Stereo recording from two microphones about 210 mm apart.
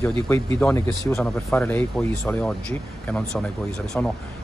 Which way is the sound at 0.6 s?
10° left (ahead or behind).